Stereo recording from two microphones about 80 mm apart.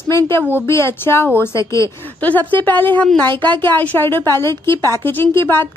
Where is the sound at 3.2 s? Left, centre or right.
Right.